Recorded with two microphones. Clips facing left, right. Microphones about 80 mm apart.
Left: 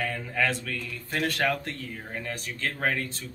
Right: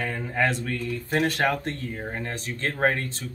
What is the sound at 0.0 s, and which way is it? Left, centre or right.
Speech, right.